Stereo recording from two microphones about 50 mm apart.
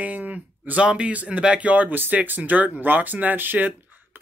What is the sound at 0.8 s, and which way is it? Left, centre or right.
Speech, right.